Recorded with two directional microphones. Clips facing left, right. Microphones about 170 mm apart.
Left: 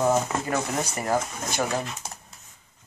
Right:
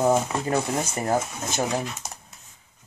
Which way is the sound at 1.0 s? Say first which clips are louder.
Right 1 dB; 25° right (ahead or behind).